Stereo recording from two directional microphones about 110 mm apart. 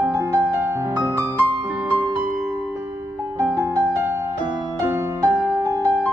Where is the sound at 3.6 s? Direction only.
30° right (ahead or behind).